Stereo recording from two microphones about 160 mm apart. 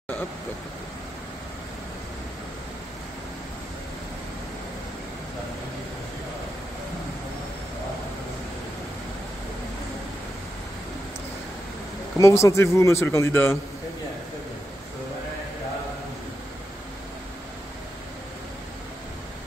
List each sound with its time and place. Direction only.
12.2 s speech: 20° left (ahead or behind)